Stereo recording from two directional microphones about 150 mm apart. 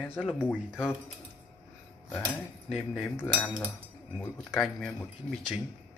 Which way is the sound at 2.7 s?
Centre (ahead or behind).